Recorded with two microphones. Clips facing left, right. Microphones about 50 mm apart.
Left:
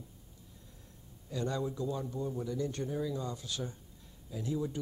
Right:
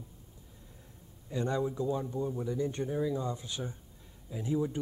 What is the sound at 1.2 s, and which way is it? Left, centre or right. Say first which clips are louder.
Speech: right 3 dB; right.